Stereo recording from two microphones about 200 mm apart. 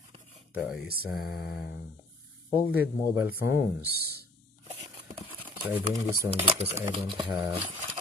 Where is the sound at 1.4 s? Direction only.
55° left (ahead or behind).